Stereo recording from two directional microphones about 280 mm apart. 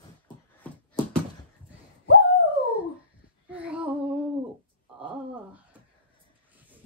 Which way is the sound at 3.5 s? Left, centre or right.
Centre.